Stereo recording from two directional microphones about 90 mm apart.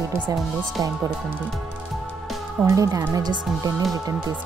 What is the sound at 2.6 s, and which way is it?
Speech, 40° right (ahead or behind).